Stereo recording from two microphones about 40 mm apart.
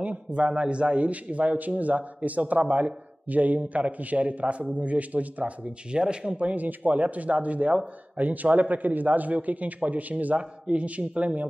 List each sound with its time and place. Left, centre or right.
0.0 s a man's voice: right
5.9 s a man's voice: right